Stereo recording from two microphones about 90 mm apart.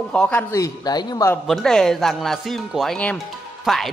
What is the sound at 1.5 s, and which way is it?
Speech, 5° left (ahead or behind).